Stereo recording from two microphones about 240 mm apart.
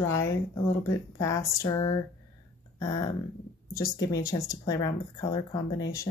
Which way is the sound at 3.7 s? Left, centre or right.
Centre.